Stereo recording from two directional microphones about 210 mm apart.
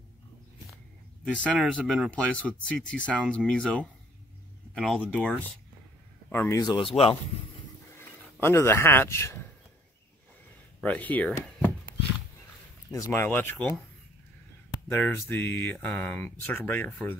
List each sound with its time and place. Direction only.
1.3 s speech: centre (ahead or behind)
6.3 s speech: 10° left (ahead or behind)
7.9 s a sound: 10° left (ahead or behind)
10.8 s speech: 5° left (ahead or behind)
12.9 s speech: 10° left (ahead or behind)
14.9 s speech: 10° left (ahead or behind)